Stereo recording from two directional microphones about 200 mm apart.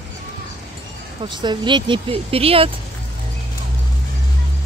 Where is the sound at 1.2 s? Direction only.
25° right (ahead or behind).